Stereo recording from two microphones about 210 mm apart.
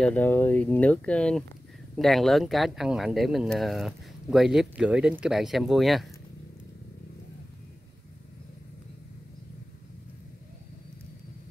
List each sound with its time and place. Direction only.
0.0 s speech: 10° left (ahead or behind)